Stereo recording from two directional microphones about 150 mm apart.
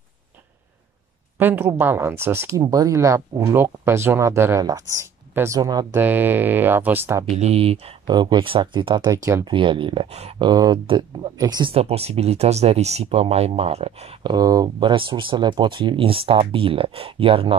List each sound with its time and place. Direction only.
1.4 s speech: 15° right (ahead or behind)
5.9 s speech: 10° right (ahead or behind)
7.2 s speech: 45° right (ahead or behind)
8.1 s speech: 30° right (ahead or behind)
9.5 s speech: 35° right (ahead or behind)
11.7 s speech: 40° right (ahead or behind)
14.2 s speech: 25° right (ahead or behind)